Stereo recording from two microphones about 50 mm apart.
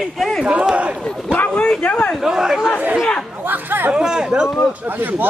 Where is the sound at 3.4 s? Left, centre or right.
Right.